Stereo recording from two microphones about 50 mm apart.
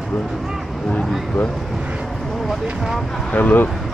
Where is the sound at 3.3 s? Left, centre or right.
Left.